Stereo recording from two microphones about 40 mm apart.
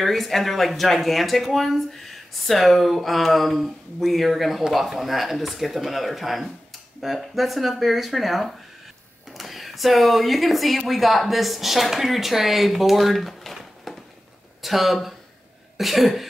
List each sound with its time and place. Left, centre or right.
0.0 s speech: centre
13.9 s a sound: centre
14.6 s speech: centre